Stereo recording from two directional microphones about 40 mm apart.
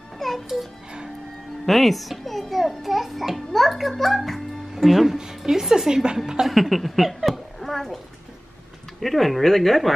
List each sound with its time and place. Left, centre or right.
0.2 s music: centre
1.7 s a child's voice: centre
4.7 s speech: centre
5.9 s a woman's voice: centre
6.4 s a child's voice: centre
9.0 s speech: centre